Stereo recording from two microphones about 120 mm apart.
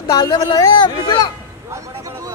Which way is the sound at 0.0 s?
35° left (ahead or behind).